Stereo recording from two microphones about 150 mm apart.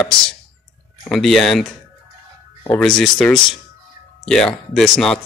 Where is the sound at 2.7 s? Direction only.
5° left (ahead or behind).